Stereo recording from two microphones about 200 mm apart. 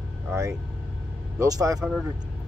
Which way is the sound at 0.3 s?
15° right (ahead or behind).